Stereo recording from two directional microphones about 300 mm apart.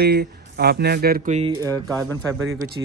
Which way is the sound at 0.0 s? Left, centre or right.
Right.